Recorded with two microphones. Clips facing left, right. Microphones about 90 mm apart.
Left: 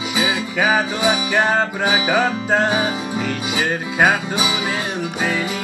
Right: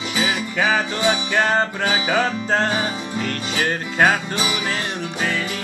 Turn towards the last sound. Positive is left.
turn(degrees=15)  # may be behind; listen again after turning